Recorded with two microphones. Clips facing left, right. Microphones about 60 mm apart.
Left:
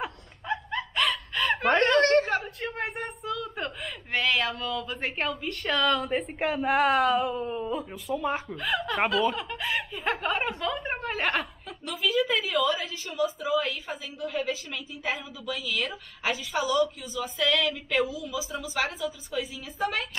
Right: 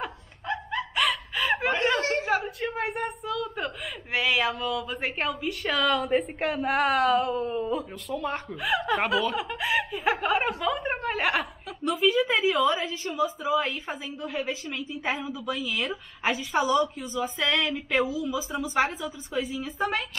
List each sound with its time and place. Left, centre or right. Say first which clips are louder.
0.0 s snicker: right 1 dB; centre
1.9 s a sound: left 4 dB; centre
2.2 s a woman's voice: right 3 dB; centre
8.5 s speech: right 3 dB; centre
9.3 s snicker: right 4 dB; centre
11.9 s a woman's voice: right 3 dB; centre
12.4 s speech: right 3 dB; right
14.3 s a woman's voice: even; centre
15.2 s speech: right 3 dB; right
19.6 s a woman's voice: right 1 dB; centre